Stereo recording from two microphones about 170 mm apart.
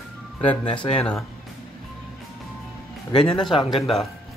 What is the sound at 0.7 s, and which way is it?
Speech, 35° left (ahead or behind).